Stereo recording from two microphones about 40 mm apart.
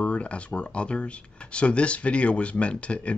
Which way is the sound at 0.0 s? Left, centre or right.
Left.